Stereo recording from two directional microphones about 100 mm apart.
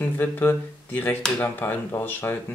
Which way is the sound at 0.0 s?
20° left (ahead or behind).